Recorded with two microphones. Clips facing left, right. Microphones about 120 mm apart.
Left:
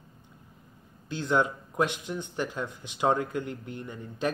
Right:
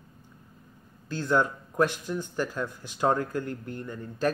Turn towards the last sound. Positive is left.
turn(degrees=15)  # may be behind; listen again after turning